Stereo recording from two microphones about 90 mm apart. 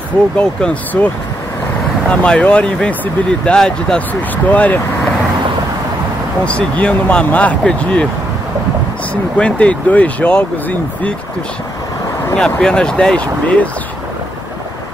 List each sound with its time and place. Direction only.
0.4 s speech: 10° left (ahead or behind)
6.4 s speech: 15° left (ahead or behind)
9.1 s speech: 15° left (ahead or behind)
12.4 s speech: 10° left (ahead or behind)